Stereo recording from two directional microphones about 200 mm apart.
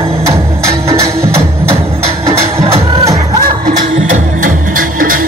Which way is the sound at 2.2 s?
30° right (ahead or behind).